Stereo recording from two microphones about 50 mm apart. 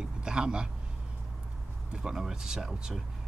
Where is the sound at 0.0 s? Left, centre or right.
Centre.